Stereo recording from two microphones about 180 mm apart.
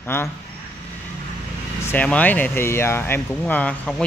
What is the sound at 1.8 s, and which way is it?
Speech, 10° left (ahead or behind).